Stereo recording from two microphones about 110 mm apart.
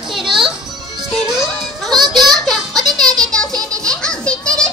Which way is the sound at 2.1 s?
Centre (ahead or behind).